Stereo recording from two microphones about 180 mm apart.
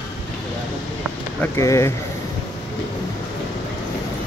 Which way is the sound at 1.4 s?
15° left (ahead or behind).